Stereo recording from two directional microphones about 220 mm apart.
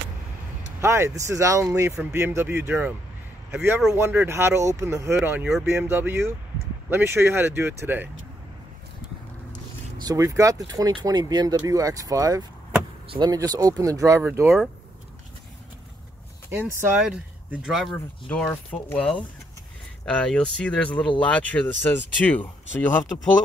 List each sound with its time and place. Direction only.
0.7 s speech: 10° right (ahead or behind)
10.0 s speech: 15° right (ahead or behind)
16.4 s speech: 10° right (ahead or behind); by 23.2 s 10° left (ahead or behind)